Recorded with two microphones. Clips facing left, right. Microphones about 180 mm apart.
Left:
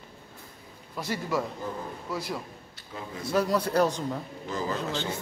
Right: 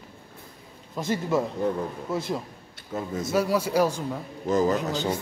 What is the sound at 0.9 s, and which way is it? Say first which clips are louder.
A man's voice: right 5 dB; 25° right (ahead or behind).